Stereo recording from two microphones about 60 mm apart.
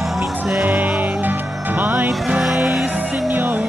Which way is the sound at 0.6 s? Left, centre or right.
Right.